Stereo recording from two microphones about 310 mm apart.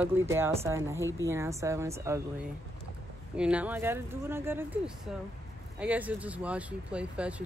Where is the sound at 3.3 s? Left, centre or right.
Centre.